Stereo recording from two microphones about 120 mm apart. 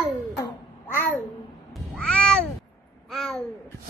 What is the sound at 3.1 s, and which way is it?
Babbling, centre (ahead or behind).